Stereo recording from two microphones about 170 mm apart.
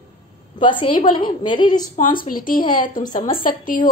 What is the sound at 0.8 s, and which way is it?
A woman's voice, 30° left (ahead or behind).